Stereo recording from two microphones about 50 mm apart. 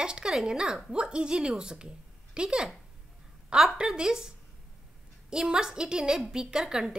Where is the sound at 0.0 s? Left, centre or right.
Centre.